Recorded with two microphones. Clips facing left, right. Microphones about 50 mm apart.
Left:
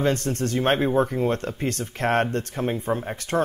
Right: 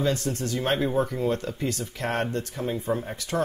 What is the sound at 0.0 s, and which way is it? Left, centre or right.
Speech, left.